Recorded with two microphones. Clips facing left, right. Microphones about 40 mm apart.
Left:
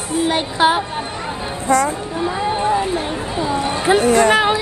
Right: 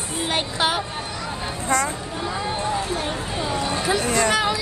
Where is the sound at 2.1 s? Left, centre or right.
Left.